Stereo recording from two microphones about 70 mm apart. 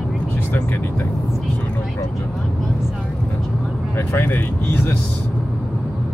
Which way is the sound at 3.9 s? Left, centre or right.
Left.